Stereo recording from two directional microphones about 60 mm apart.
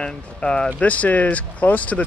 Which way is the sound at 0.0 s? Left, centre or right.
Centre.